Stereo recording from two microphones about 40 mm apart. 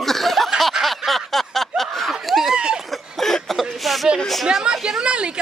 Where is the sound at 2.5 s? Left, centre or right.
Right.